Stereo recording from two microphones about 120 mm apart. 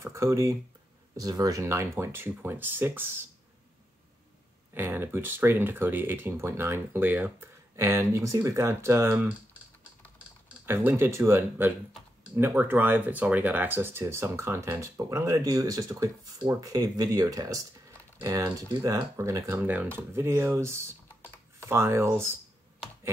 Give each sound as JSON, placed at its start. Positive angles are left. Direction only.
{"t": 0.0, "sound": "speech", "side_deg": -25}
{"t": 4.7, "sound": "speech", "side_deg": -20}
{"t": 10.6, "sound": "speech", "side_deg": -20}